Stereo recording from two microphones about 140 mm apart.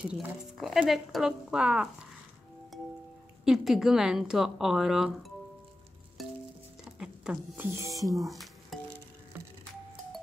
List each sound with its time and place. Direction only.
0.0 s speech: 5° right (ahead or behind)
3.4 s speech: centre (ahead or behind)
6.2 s clip-clop: centre (ahead or behind)
6.8 s music: 5° right (ahead or behind)
7.5 s speech: 15° right (ahead or behind)
8.1 s speech: centre (ahead or behind)